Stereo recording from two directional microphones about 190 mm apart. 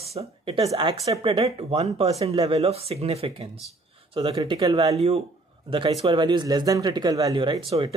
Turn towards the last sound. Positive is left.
turn(degrees=-25)  # may be behind; listen again after turning